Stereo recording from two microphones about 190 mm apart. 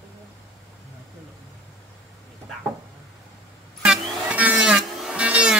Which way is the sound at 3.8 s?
5° right (ahead or behind).